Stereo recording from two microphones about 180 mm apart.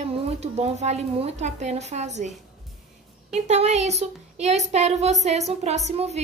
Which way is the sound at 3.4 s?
40° right (ahead or behind).